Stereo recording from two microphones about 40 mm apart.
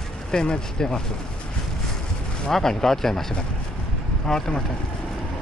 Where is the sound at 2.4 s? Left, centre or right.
Centre.